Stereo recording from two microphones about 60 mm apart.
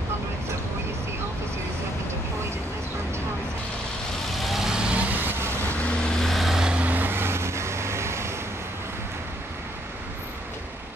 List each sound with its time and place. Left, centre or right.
4.4 s vehicle: centre
5.1 s vehicle: right
5.9 s vehicle: centre
6.2 s vehicle: centre
6.6 s vehicle: right